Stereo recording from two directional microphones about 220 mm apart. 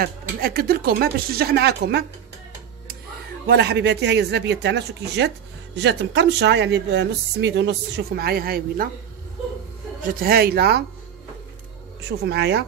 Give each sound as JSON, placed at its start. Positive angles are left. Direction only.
{"t": 0.0, "sound": "speech", "side_deg": -45}
{"t": 3.4, "sound": "speech", "side_deg": -50}
{"t": 10.0, "sound": "speech", "side_deg": -40}
{"t": 12.0, "sound": "speech", "side_deg": -50}